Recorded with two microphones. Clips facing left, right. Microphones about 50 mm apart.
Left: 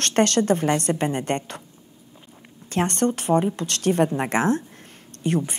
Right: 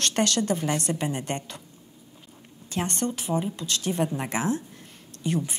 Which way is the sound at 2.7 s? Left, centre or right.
Left.